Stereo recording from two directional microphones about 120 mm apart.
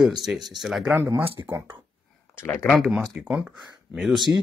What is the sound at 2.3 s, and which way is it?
Speech, 20° left (ahead or behind).